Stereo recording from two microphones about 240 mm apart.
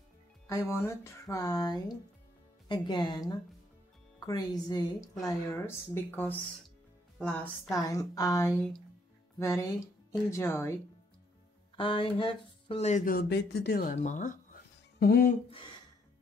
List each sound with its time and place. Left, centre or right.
0.5 s a woman's voice: centre; by 15.3 s left